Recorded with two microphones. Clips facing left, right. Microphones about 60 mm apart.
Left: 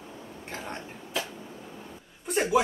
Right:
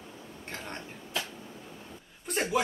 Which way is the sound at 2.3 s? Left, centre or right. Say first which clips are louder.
Left 5 dB; centre.